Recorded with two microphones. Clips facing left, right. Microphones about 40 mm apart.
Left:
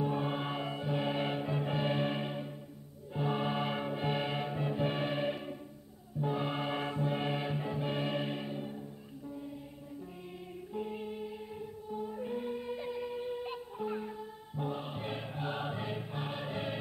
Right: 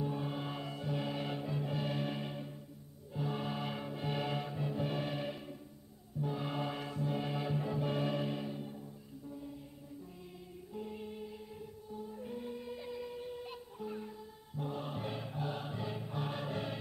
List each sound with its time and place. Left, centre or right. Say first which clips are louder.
0.0 s music: left 5 dB; left
10.7 s music: left 5 dB; left